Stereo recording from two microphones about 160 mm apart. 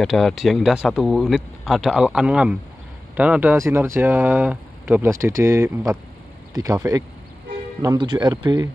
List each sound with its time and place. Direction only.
0.0 s speech: centre (ahead or behind); by 8.6 s 25° right (ahead or behind)